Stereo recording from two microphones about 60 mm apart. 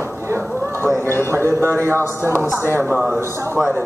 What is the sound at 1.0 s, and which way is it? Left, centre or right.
Speech, left.